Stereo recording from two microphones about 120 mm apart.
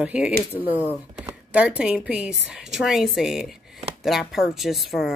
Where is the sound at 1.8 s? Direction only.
10° right (ahead or behind).